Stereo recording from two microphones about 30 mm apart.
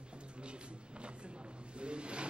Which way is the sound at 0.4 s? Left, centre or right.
Right.